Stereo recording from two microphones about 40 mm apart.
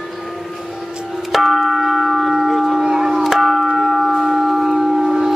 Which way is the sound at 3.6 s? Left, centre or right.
Centre.